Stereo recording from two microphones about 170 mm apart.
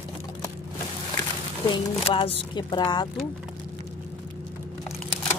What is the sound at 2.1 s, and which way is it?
Speech, 35° left (ahead or behind).